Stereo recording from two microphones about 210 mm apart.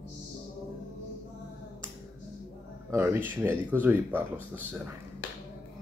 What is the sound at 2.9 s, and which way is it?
Speech, 10° right (ahead or behind).